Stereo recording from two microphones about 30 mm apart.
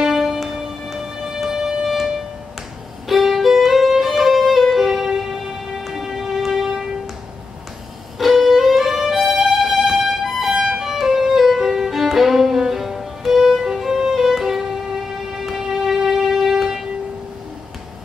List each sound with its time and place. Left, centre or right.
0.1 s music: centre
3.1 s violin: centre
5.9 s music: centre
8.2 s music: centre
11.9 s violin: centre
14.1 s music: centre
15.7 s music: centre